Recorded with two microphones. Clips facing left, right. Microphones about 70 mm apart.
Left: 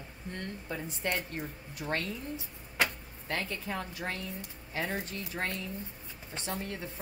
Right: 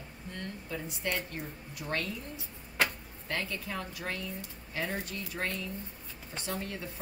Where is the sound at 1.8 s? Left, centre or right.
Centre.